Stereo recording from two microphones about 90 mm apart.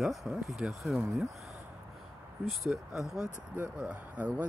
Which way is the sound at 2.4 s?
Centre (ahead or behind).